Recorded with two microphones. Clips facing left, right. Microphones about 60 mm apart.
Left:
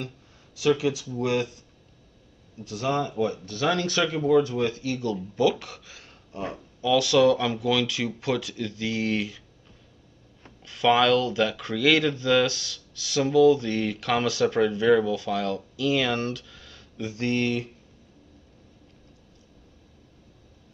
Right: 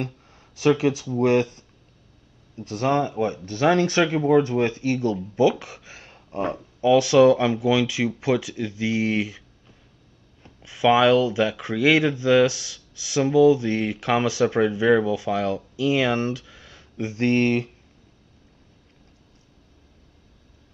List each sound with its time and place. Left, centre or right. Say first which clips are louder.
0.6 s speech: right 3 dB; right; by 9.4 s centre
10.6 s speech: right 3 dB; centre; by 17.6 s right